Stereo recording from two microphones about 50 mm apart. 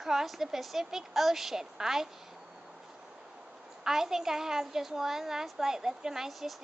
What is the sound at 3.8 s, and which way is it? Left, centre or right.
A child's voice, centre.